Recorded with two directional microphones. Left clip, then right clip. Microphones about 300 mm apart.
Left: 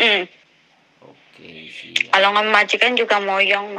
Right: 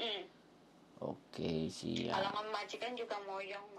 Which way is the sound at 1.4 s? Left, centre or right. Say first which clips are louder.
Left 5 dB; right.